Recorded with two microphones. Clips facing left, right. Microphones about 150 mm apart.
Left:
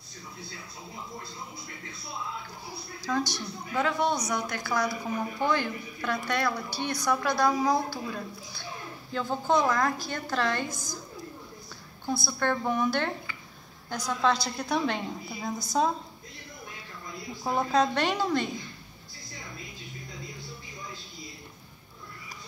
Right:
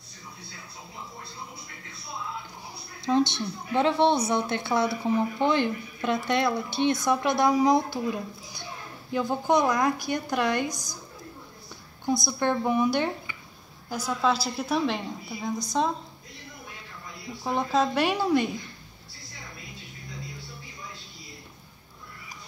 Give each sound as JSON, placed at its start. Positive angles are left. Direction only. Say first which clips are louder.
{"t": 3.1, "sound": "a woman's voice", "louder": "right 6 dB", "side_deg": -25}
{"t": 12.1, "sound": "a woman's voice", "louder": "right 3 dB", "side_deg": -15}
{"t": 17.4, "sound": "a woman's voice", "louder": "even", "side_deg": 0}